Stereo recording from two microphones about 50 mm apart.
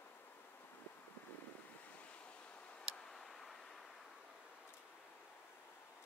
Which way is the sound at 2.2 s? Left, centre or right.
Left.